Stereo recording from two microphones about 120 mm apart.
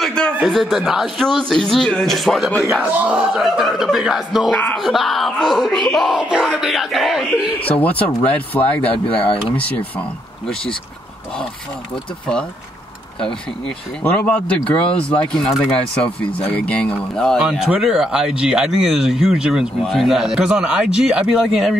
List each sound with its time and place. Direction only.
0.0 s speech: 5° left (ahead or behind)
2.9 s speech: 10° right (ahead or behind)
4.5 s speech: 10° left (ahead or behind)
7.8 s speech: 15° left (ahead or behind)
9.0 s speech: 50° left (ahead or behind)
11.9 s speech: 5° left (ahead or behind)
13.7 s speech: 10° left (ahead or behind)
17.4 s speech: 5° right (ahead or behind)